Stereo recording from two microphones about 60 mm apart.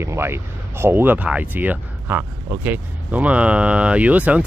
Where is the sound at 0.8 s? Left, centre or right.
Right.